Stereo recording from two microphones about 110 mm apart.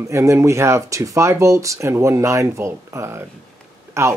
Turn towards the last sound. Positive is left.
turn(degrees=-25)  # may be behind; listen again after turning